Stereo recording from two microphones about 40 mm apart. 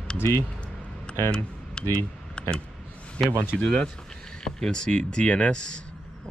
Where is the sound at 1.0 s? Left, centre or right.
Left.